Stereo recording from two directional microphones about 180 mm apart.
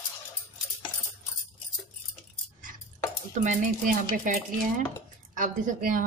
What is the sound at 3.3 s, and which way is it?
Speech, 45° right (ahead or behind).